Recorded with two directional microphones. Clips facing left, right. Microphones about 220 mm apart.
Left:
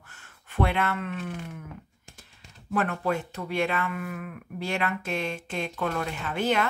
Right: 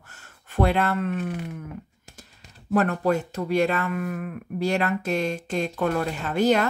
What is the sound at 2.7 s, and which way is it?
Speech, 40° right (ahead or behind).